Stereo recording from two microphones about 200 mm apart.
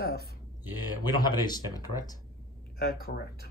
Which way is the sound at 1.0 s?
20° left (ahead or behind).